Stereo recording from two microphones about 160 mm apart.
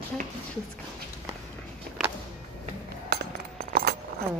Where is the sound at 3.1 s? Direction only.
75° right (ahead or behind).